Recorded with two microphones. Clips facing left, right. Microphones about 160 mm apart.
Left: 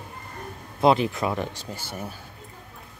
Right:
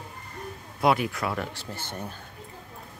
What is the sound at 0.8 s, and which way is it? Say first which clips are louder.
Speech: left 4 dB; 25° left (ahead or behind).